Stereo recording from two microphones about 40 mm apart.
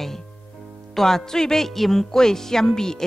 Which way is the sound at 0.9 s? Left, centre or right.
Centre.